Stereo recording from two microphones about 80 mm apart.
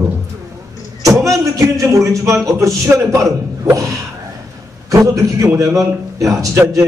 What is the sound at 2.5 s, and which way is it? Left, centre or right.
Speech, right.